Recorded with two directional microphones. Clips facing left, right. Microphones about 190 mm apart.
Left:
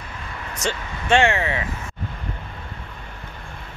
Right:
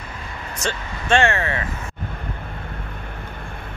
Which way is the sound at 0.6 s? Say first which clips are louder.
Left 1 dB; 15° left (ahead or behind).